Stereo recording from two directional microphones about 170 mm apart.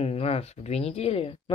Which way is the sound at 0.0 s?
35° left (ahead or behind).